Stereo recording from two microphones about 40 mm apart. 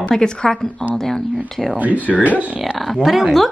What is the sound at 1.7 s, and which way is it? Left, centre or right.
Speech, right.